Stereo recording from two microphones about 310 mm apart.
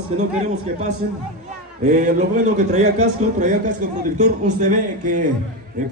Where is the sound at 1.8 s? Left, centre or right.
Right.